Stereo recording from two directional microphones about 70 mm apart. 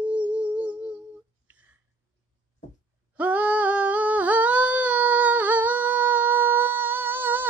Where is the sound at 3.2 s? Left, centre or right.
Right.